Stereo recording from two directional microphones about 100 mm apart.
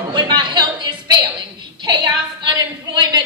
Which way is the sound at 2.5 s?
45° right (ahead or behind).